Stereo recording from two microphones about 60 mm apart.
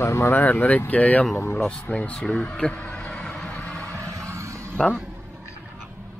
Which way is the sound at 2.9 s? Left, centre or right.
Centre.